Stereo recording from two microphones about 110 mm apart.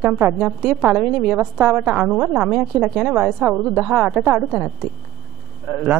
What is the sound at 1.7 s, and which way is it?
A man's voice, 5° right (ahead or behind).